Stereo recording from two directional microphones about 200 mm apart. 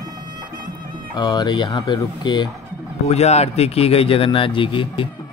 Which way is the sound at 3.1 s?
35° left (ahead or behind).